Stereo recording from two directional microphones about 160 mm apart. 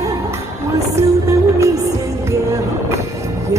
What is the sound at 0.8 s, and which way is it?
Music, 20° right (ahead or behind).